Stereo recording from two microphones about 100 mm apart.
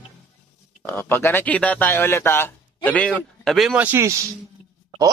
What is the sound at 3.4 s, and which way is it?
Speech, centre (ahead or behind).